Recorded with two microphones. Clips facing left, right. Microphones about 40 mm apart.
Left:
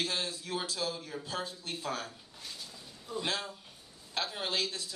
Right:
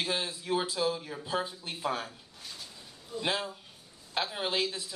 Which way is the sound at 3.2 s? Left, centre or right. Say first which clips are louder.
Right 4 dB; centre.